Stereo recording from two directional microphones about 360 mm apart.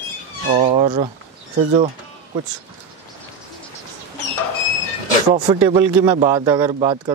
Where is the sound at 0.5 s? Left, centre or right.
Centre.